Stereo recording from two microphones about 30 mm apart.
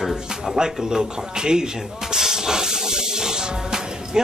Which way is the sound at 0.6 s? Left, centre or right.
Right.